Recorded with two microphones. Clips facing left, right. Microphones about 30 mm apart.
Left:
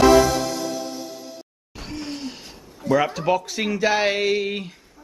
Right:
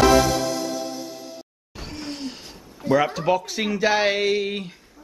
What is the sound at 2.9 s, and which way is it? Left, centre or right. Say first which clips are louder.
Speech: even; centre.